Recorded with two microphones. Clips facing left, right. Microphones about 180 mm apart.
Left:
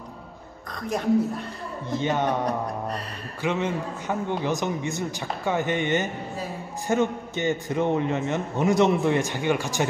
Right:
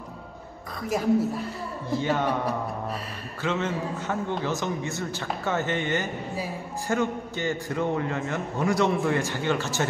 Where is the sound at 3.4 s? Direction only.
15° left (ahead or behind).